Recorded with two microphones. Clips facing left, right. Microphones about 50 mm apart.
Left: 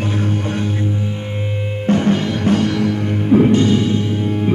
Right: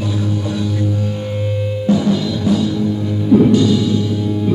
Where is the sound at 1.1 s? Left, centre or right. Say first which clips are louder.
Right 3 dB; left.